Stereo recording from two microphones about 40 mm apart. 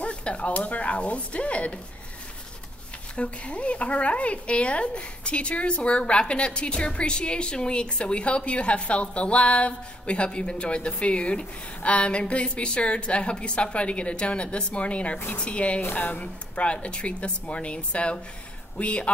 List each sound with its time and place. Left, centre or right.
0.0 s dishes: left
0.6 s speech: left
3.2 s speech: left
15.9 s speech: left
16.2 s speech: left